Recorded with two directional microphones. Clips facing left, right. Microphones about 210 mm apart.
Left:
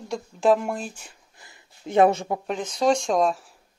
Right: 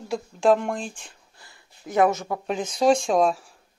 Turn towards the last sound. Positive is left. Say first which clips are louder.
# right 1 dB
turn(degrees=0)  # may be behind; listen again after turning